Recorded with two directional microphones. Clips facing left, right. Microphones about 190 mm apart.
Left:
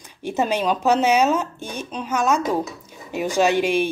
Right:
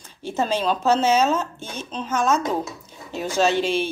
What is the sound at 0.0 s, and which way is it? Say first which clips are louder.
Speech: left 2 dB; 15° left (ahead or behind).